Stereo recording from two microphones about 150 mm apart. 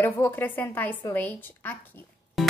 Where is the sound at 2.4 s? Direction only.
Centre (ahead or behind).